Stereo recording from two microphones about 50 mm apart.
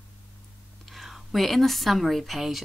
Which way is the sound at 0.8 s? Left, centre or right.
Centre.